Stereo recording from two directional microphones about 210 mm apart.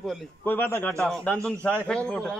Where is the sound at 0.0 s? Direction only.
5° left (ahead or behind).